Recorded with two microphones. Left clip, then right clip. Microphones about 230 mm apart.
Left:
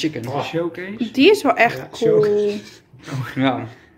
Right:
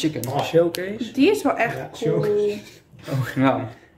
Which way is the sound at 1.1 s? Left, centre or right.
Left.